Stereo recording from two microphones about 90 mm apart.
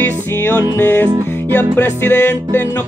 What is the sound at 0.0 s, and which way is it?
Music, 25° left (ahead or behind).